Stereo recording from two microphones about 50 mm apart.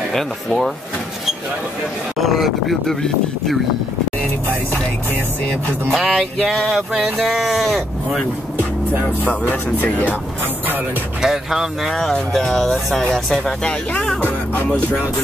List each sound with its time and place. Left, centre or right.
0.1 s speech: centre
2.1 s speech: centre
5.9 s speech: centre
9.2 s speech: left
11.1 s speech: centre
11.9 s speech: centre